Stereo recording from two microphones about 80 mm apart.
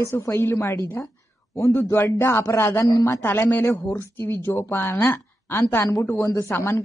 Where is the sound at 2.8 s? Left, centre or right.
Left.